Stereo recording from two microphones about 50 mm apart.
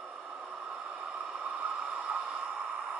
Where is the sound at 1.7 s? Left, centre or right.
Centre.